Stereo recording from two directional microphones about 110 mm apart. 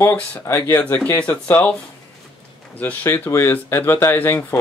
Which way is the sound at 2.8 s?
15° left (ahead or behind).